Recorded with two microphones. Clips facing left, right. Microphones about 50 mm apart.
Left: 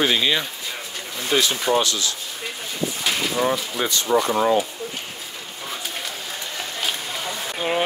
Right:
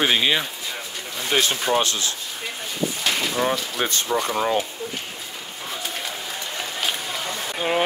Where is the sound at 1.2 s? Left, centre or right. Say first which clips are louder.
Left 1 dB; right.